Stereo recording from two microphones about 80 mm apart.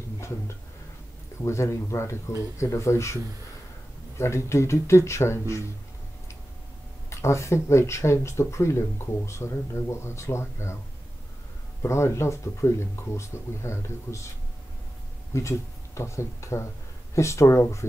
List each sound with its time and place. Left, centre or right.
1.4 s speech: left
4.2 s speech: left
7.1 s speech: left
11.8 s speech: left
15.3 s speech: left